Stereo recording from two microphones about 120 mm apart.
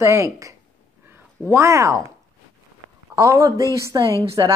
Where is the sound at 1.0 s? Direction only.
20° right (ahead or behind).